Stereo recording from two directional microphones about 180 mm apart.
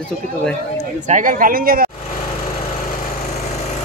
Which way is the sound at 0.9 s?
45° right (ahead or behind).